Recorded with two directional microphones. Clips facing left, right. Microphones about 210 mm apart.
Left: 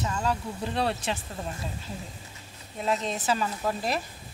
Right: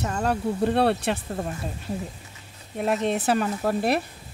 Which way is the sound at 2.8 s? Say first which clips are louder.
Right 5 dB; 60° right (ahead or behind).